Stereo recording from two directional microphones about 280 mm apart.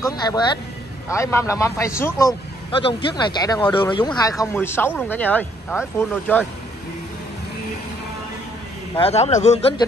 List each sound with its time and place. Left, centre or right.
0.0 s a man's voice: centre
8.9 s a man's voice: left